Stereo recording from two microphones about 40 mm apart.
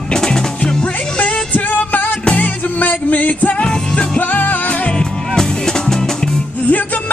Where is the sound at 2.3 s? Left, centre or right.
Left.